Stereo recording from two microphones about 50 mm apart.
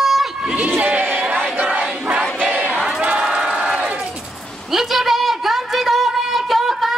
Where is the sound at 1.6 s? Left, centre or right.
Right.